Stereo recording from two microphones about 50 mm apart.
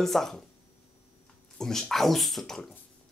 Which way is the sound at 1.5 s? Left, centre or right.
Centre.